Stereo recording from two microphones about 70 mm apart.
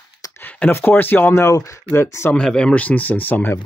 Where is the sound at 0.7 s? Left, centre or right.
Left.